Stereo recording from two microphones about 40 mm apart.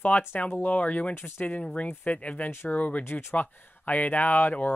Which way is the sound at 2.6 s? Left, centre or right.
Left.